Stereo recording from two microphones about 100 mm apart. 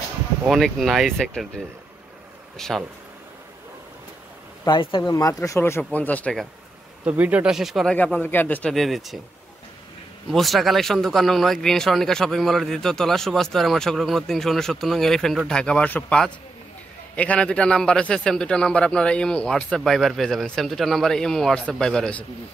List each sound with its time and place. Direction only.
0.5 s speech: centre (ahead or behind)
2.5 s speech: 5° left (ahead or behind)
4.6 s speech: 50° left (ahead or behind)
5.1 s speech: 35° left (ahead or behind)
5.6 s a man's voice: 20° left (ahead or behind)
7.1 s speech: 15° right (ahead or behind)
7.5 s speech: centre (ahead or behind)
7.9 s a man's voice: 15° left (ahead or behind)
8.7 s speech: centre (ahead or behind)
10.3 s a man's voice: centre (ahead or behind)